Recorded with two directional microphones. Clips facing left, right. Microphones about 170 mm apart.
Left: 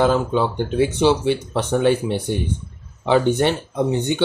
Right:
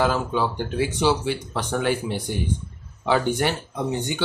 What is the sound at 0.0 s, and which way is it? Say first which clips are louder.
Speech: left 5 dB; 25° left (ahead or behind).